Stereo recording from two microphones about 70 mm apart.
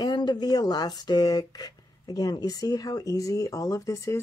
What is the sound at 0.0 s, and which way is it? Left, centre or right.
A woman's voice, left.